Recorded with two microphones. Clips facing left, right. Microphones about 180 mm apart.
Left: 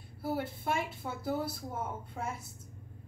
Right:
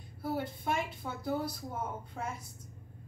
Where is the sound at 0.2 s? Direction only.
5° left (ahead or behind).